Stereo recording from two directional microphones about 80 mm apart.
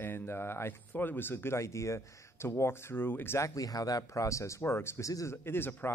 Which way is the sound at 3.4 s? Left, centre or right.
Left.